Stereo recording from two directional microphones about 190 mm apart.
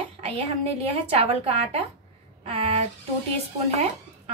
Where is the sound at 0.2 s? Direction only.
30° right (ahead or behind).